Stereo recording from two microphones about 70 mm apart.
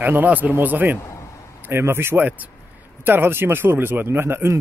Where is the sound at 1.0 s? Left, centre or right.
Left.